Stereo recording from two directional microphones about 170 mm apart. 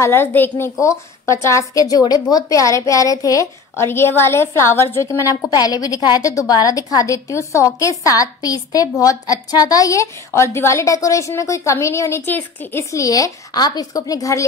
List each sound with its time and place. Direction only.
0.0 s a woman's voice: 15° left (ahead or behind)